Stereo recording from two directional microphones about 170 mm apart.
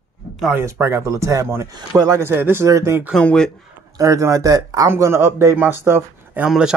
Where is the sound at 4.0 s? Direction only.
20° right (ahead or behind).